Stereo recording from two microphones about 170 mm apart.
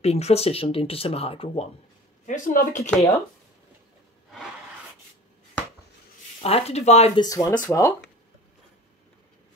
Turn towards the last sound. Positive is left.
turn(degrees=15)  # may be behind; listen again after turning